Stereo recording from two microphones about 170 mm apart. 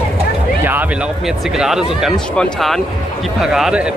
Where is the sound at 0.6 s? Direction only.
10° right (ahead or behind).